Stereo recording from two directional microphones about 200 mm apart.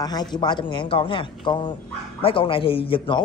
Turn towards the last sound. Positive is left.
turn(degrees=25)  # may be behind; listen again after turning